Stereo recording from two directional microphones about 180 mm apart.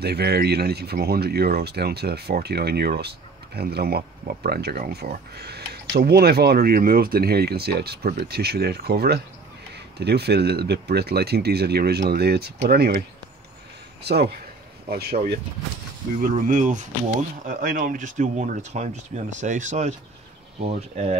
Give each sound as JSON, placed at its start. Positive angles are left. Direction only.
{"t": 0.0, "sound": "speech", "side_deg": -60}
{"t": 14.0, "sound": "speech", "side_deg": -65}
{"t": 16.2, "sound": "speech", "side_deg": -50}